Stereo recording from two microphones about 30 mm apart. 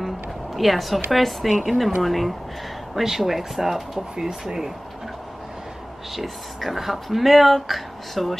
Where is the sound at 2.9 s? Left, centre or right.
Centre.